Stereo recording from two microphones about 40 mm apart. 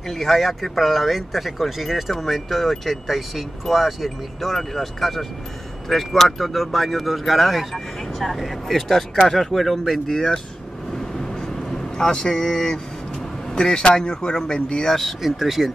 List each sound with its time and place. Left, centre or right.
0.1 s speech: centre
11.1 s vehicle: centre
12.5 s speech: centre
14.9 s speech: centre
15.2 s speech: centre